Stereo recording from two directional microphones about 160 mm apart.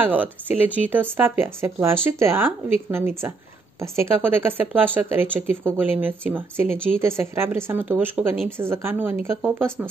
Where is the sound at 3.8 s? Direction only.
15° right (ahead or behind).